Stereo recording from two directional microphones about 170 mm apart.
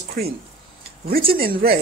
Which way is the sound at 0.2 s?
60° right (ahead or behind).